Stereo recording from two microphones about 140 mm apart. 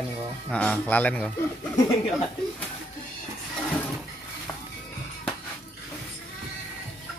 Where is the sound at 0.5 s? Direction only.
10° left (ahead or behind).